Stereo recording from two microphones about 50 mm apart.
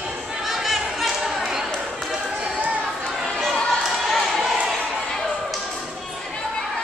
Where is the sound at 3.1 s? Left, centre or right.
Centre.